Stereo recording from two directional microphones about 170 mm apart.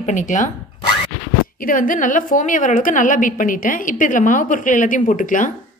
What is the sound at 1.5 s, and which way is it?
A woman's voice, 55° left (ahead or behind).